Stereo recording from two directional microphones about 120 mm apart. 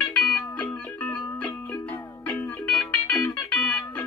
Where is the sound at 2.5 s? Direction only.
10° left (ahead or behind).